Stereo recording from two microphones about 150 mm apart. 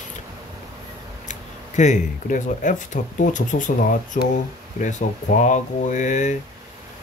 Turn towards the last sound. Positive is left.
turn(degrees=55)  # may be behind; listen again after turning